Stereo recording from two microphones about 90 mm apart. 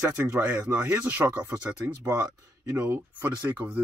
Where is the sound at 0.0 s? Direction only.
20° right (ahead or behind).